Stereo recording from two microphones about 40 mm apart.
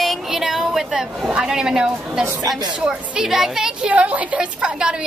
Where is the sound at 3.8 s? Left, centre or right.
Right.